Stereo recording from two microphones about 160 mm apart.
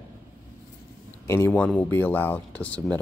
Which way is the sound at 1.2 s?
15° left (ahead or behind).